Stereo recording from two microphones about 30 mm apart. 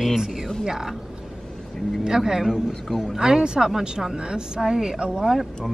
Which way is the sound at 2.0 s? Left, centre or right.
Right.